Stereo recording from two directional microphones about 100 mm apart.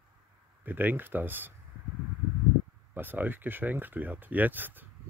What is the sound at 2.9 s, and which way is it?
Speech, 20° right (ahead or behind).